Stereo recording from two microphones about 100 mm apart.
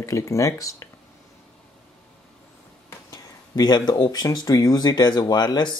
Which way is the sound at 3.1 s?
45° left (ahead or behind).